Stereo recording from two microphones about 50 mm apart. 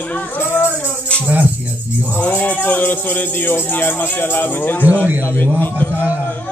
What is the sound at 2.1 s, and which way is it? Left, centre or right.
Speech, left.